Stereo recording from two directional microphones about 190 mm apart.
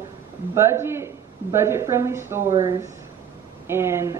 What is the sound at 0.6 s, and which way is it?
A woman's voice, 15° right (ahead or behind).